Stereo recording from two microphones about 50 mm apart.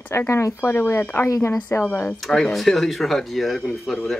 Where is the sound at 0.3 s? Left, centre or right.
Left.